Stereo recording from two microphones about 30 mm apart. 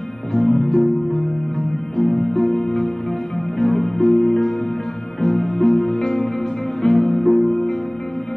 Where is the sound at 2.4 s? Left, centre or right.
Left.